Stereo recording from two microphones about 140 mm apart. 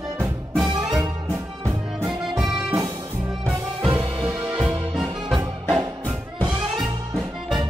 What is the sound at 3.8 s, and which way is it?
Music, 35° right (ahead or behind).